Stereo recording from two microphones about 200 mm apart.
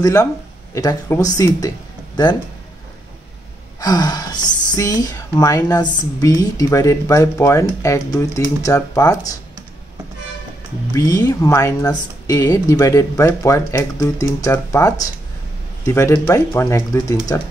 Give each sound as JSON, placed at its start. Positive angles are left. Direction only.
{"t": 0.0, "sound": "speech", "side_deg": 15}
{"t": 3.8, "sound": "gasp", "side_deg": 20}
{"t": 4.7, "sound": "speech", "side_deg": 20}
{"t": 10.9, "sound": "speech", "side_deg": 20}